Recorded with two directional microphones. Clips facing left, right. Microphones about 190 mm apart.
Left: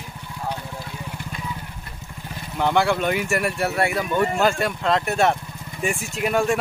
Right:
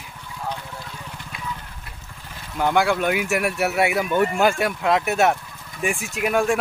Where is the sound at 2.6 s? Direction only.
5° right (ahead or behind).